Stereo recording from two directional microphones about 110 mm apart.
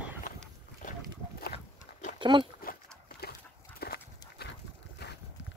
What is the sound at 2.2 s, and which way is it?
Dog, 45° right (ahead or behind).